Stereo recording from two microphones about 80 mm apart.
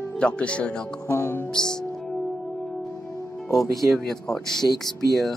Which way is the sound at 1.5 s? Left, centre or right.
Centre.